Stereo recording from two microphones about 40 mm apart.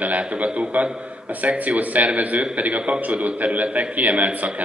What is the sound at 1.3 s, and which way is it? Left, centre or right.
A man's voice, right.